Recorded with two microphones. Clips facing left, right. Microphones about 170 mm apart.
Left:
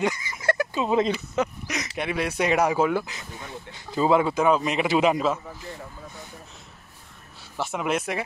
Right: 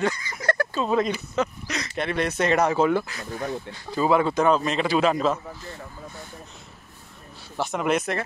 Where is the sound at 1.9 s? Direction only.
10° left (ahead or behind).